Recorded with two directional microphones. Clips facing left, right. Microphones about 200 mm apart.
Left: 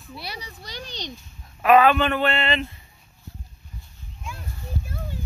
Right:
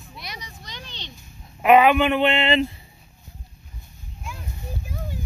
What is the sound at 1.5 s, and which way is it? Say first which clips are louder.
Speech: right 1 dB; 20° right (ahead or behind).